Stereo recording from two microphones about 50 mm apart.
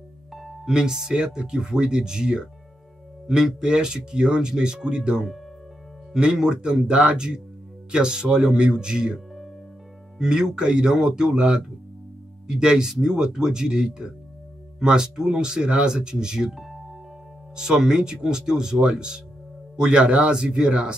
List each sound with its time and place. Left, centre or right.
0.3 s music: centre
0.7 s speech: centre
6.3 s speech: centre
16.5 s music: centre
17.6 s speech: centre